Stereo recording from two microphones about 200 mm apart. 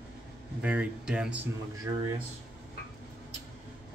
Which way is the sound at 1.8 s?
20° right (ahead or behind).